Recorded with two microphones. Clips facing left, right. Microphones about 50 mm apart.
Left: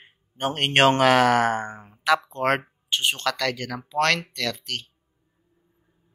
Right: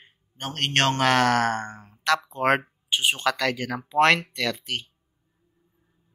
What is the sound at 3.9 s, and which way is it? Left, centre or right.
Speech, centre.